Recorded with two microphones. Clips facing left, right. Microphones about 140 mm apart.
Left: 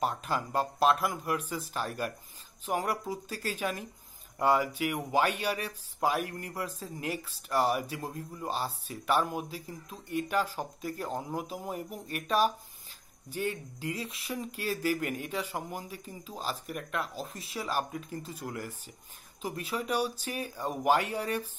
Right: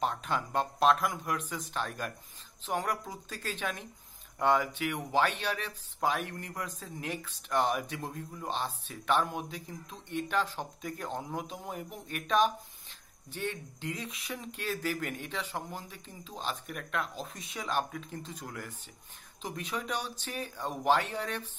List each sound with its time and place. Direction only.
0.0 s speech: 5° left (ahead or behind)